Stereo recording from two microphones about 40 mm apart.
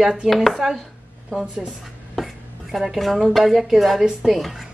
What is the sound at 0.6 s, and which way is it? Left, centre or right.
Speech, centre.